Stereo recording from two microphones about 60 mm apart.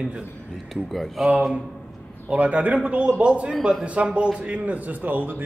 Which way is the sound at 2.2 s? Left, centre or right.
Right.